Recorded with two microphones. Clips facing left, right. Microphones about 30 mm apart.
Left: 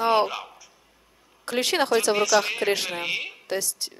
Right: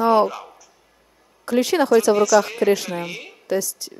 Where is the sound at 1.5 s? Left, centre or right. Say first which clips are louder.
Right 5 dB; left.